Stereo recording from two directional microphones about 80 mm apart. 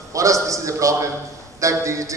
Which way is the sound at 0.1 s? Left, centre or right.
Right.